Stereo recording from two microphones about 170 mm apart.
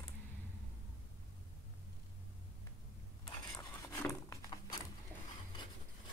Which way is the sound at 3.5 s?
20° left (ahead or behind).